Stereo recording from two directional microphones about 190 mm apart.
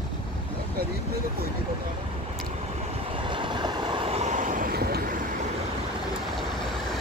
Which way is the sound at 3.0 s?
25° right (ahead or behind).